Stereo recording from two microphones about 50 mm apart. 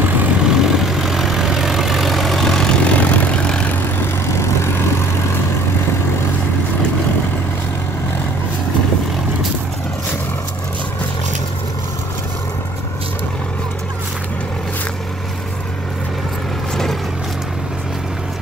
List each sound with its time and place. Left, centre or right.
0.4 s vehicle: centre
2.8 s vehicle: left
4.3 s vehicle: left